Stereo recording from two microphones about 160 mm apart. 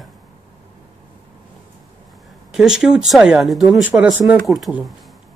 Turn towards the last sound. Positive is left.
turn(degrees=-5)  # may be behind; listen again after turning